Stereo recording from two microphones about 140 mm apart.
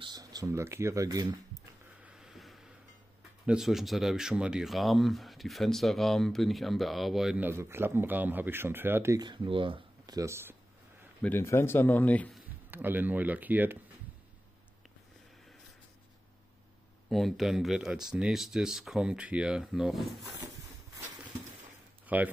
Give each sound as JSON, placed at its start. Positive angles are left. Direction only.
{"t": 0.0, "sound": "speech", "side_deg": -30}
{"t": 1.5, "sound": "a sound", "side_deg": -25}
{"t": 2.0, "sound": "a sound", "side_deg": -5}
{"t": 3.4, "sound": "speech", "side_deg": -5}
{"t": 7.4, "sound": "speech", "side_deg": -15}
{"t": 9.2, "sound": "speech", "side_deg": -35}
{"t": 10.1, "sound": "speech", "side_deg": -20}
{"t": 11.2, "sound": "speech", "side_deg": 15}
{"t": 12.7, "sound": "speech", "side_deg": -15}
{"t": 17.1, "sound": "speech", "side_deg": 0}
{"t": 22.0, "sound": "a sound", "side_deg": -10}